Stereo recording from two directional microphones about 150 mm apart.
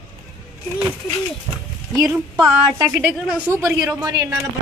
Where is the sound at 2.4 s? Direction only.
25° right (ahead or behind).